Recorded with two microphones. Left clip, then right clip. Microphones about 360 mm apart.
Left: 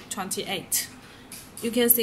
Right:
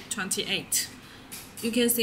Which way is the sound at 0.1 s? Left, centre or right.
Left.